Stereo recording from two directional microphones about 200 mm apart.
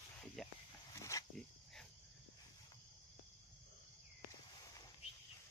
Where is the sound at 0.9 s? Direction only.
15° left (ahead or behind).